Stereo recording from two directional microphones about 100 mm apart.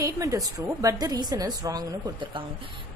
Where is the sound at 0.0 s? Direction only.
35° right (ahead or behind).